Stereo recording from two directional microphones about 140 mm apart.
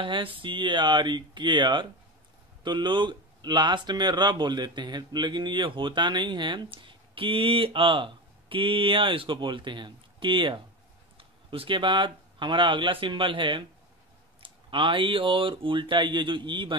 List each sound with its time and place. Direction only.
0.0 s speech: 40° right (ahead or behind)